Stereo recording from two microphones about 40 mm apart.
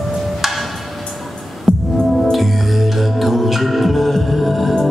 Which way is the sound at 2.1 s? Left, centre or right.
Centre.